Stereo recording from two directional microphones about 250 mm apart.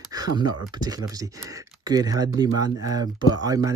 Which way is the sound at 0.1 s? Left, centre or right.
Centre.